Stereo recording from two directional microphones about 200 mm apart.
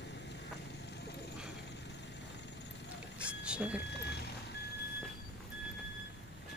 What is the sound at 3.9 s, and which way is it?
Vehicle, 55° left (ahead or behind).